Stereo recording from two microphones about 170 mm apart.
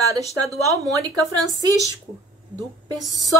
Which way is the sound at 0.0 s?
20° right (ahead or behind).